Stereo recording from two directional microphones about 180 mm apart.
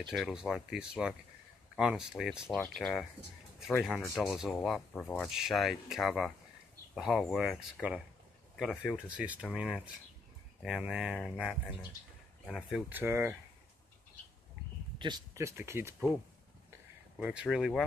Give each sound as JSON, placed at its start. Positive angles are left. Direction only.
{"t": 0.1, "sound": "speech", "side_deg": 0}
{"t": 12.9, "sound": "speech", "side_deg": -10}
{"t": 15.0, "sound": "speech", "side_deg": -25}
{"t": 17.2, "sound": "speech", "side_deg": -5}